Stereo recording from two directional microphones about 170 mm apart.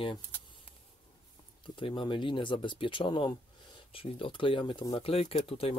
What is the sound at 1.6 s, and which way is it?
Speech, 30° left (ahead or behind).